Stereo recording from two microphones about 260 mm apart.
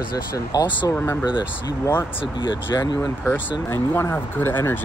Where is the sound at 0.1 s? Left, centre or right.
Centre.